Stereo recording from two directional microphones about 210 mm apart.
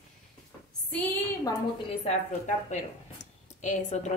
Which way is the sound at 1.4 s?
30° left (ahead or behind).